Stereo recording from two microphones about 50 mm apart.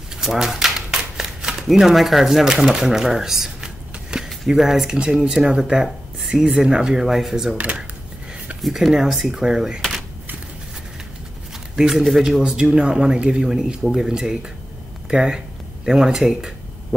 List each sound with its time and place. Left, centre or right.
0.2 s shuffling cards: centre
4.6 s speech: centre
7.5 s speech: right
8.6 s speech: centre
9.8 s a sound: centre
11.7 s speech: centre